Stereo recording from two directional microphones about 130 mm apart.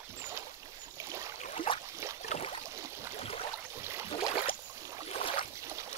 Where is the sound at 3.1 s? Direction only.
50° left (ahead or behind).